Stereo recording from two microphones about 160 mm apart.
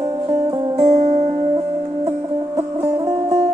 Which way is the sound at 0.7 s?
45° right (ahead or behind).